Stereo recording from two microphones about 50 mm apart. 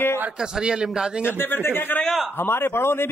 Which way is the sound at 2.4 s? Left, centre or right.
Left.